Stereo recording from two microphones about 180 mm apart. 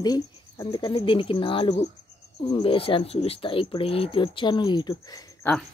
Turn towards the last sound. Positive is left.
turn(degrees=10)  # may be behind; listen again after turning